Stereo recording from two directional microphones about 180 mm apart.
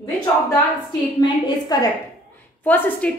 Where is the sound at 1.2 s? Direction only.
25° left (ahead or behind).